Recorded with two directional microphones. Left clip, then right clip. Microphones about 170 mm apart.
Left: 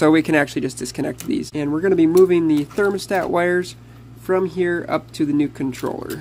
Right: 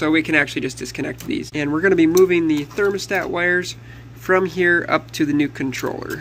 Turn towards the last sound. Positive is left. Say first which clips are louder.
# right 1 dB
turn(degrees=25)  # may be behind; listen again after turning